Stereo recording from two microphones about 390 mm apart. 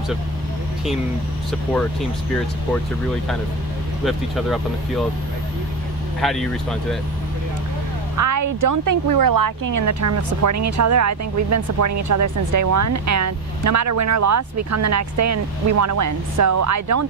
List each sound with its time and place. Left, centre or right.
4.0 s speech: centre
6.2 s speech: centre
8.2 s speech: right